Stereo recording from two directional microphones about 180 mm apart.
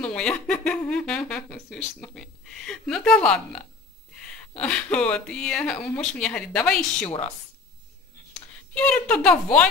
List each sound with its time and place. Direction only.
0.0 s speech: 5° left (ahead or behind)
7.1 s a woman's voice: 35° left (ahead or behind)
8.7 s speech: 5° left (ahead or behind)